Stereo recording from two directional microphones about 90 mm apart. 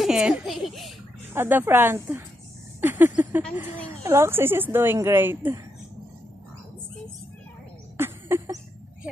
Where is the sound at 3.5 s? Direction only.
20° right (ahead or behind).